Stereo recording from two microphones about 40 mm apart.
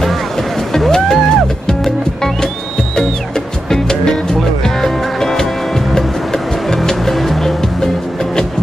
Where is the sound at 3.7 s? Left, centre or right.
Centre.